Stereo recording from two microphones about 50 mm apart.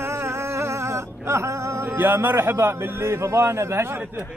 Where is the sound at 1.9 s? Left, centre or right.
Right.